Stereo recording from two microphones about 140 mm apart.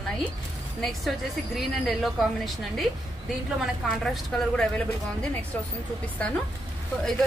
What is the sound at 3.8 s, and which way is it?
Speech, centre (ahead or behind).